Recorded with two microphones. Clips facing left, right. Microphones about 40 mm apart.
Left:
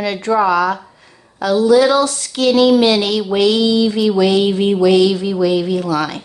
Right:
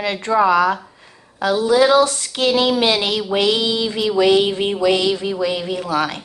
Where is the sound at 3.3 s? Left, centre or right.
Right.